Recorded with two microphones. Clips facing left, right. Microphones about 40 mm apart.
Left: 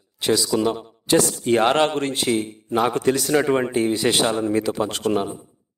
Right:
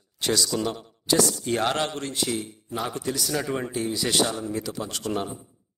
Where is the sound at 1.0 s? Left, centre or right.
Left.